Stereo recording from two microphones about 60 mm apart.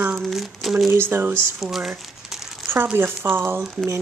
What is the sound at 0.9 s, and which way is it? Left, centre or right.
Speech, right.